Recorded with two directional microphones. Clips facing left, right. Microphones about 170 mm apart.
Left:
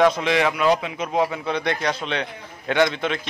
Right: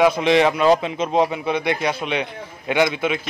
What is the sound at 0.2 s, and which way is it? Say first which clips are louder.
A man's voice: right 4 dB; 25° right (ahead or behind).